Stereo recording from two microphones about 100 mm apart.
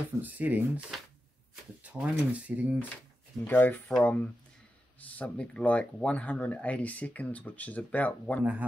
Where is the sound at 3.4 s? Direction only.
20° left (ahead or behind).